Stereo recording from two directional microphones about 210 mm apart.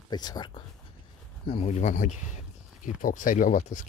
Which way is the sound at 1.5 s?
30° left (ahead or behind).